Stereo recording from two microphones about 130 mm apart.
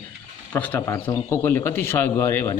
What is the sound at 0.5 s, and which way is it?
A man's voice, 15° left (ahead or behind).